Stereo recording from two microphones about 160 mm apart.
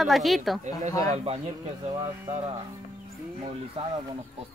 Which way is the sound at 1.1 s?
40° right (ahead or behind).